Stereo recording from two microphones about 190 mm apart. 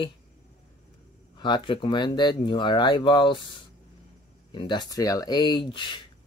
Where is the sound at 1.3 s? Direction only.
25° left (ahead or behind).